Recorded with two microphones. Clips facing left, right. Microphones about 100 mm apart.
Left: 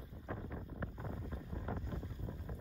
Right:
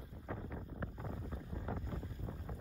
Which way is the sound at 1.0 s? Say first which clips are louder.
Even; centre (ahead or behind).